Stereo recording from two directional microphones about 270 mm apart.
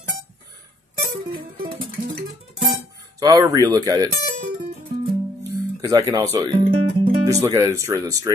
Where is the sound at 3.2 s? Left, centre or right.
Centre.